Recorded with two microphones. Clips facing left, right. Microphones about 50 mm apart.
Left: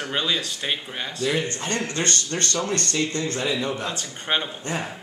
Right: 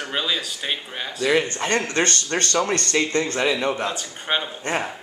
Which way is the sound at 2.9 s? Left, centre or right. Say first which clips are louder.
Right 4 dB; right.